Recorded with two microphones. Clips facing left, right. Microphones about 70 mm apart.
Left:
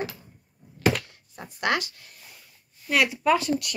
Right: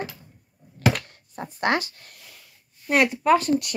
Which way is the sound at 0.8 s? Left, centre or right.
Right.